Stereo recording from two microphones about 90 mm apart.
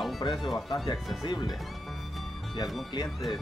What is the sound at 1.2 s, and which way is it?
Speech, 60° left (ahead or behind).